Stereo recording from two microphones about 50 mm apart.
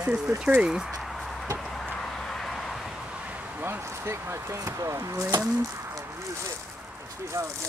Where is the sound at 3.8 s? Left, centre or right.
Right.